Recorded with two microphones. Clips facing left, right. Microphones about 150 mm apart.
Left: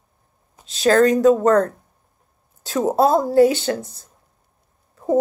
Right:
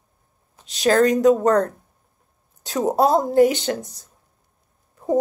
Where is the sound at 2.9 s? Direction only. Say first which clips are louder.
Left 1 dB; 15° right (ahead or behind).